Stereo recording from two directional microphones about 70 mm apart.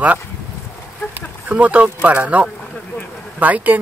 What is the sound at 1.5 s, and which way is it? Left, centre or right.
Speech, centre.